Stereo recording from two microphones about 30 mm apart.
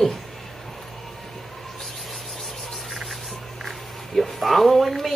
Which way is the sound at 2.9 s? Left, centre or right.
Centre.